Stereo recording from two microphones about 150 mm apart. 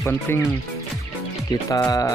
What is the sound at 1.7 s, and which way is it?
Speech, 20° left (ahead or behind).